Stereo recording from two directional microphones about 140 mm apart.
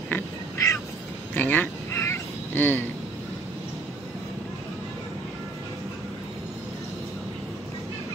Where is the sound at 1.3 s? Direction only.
15° left (ahead or behind).